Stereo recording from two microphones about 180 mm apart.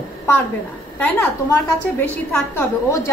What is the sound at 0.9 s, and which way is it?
Speech, 10° left (ahead or behind).